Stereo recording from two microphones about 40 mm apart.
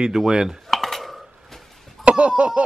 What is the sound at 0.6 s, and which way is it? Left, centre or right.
Cutlery, centre.